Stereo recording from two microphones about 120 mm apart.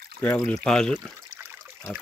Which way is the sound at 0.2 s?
15° left (ahead or behind).